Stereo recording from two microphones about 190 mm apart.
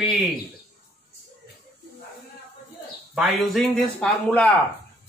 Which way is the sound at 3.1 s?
Centre (ahead or behind).